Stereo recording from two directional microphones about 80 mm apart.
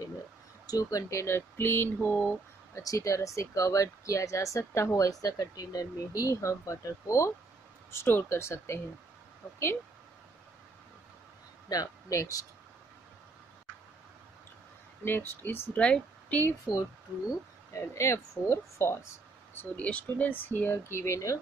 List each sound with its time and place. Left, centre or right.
0.7 s speech: left
2.8 s speech: left
11.7 s speech: left
15.0 s speech: left
15.7 s speech: centre
16.7 s speech: centre
17.3 s speech: left
19.6 s speech: centre; by 21.4 s left